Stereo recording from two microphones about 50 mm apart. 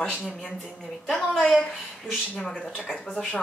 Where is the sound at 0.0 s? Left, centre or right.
Centre.